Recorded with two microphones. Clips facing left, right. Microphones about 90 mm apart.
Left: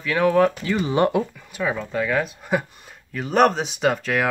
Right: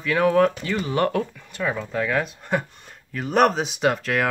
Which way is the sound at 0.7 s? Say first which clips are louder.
Left 3 dB; 20° left (ahead or behind).